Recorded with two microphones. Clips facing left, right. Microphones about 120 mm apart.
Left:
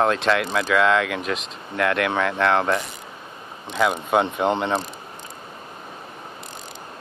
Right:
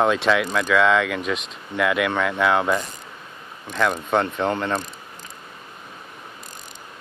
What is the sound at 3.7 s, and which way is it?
Speech, 10° left (ahead or behind).